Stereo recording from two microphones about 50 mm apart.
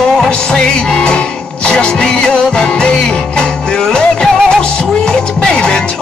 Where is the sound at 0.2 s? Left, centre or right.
Centre.